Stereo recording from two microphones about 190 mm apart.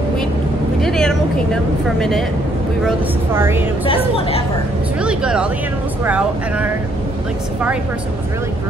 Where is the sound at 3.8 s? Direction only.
30° left (ahead or behind).